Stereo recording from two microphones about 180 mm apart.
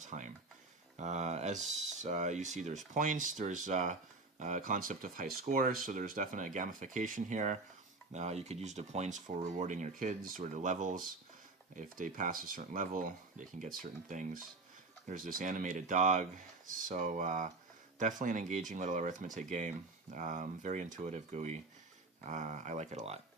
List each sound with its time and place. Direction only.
0.0 s speech: 45° right (ahead or behind)